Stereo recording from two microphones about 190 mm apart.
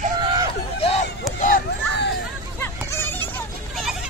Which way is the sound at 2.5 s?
10° left (ahead or behind).